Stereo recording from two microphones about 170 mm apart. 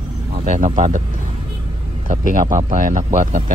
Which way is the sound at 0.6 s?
45° right (ahead or behind).